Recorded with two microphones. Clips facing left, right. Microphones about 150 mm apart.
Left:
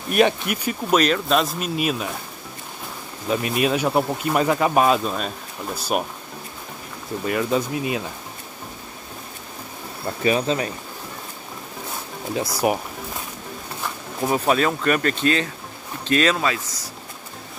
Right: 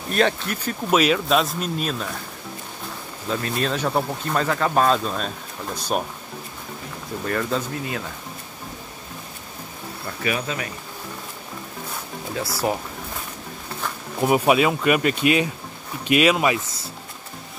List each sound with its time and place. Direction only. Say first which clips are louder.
0.1 s speech: left 3 dB; 15° left (ahead or behind)
0.8 s speech: even; 5° right (ahead or behind)
3.3 s speech: left 3 dB; 15° left (ahead or behind)
7.2 s speech: left 3 dB; 10° left (ahead or behind)
10.2 s speech: left 6 dB; 30° left (ahead or behind)
12.4 s speech: left 3 dB; 15° left (ahead or behind)
14.2 s speech: right 2 dB; 10° right (ahead or behind)